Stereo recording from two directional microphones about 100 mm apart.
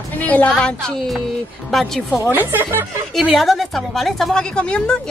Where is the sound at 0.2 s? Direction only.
15° left (ahead or behind).